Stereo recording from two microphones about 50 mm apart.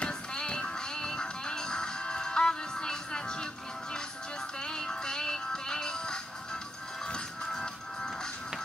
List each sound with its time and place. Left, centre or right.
0.0 s music: centre
4.6 s music: centre